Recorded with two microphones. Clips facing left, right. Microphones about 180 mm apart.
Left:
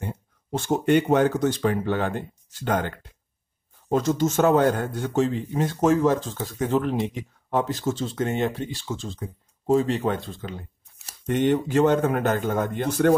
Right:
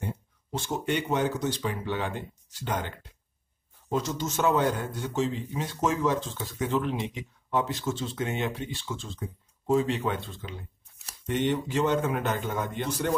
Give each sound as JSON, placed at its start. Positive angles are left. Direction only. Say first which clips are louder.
{"t": 0.5, "sound": "speech", "louder": "left 9 dB", "side_deg": 50}
{"t": 3.9, "sound": "speech", "louder": "left 8 dB", "side_deg": 50}